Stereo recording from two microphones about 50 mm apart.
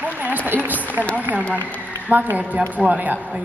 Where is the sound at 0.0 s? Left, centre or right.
Right.